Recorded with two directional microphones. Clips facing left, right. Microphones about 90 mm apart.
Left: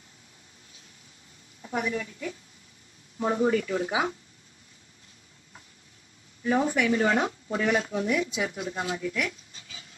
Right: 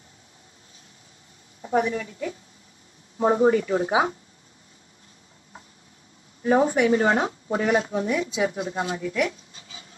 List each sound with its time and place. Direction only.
1.6 s a woman's voice: 30° right (ahead or behind)
6.4 s speech: 35° right (ahead or behind)